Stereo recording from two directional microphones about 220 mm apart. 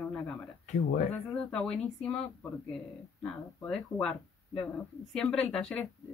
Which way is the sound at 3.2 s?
5° left (ahead or behind).